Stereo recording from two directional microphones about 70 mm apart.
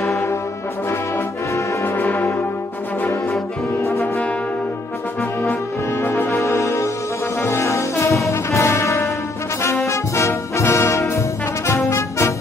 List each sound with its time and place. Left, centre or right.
2.0 s brass instrument: left
6.0 s music: left
7.4 s brass instrument: left